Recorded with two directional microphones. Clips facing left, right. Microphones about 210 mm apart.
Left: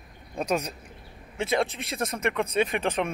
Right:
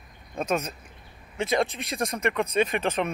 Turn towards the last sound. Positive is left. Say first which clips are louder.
# right 1 dB
turn(degrees=10)  # may be behind; listen again after turning